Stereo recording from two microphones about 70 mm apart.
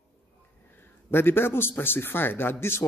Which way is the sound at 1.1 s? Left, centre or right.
Left.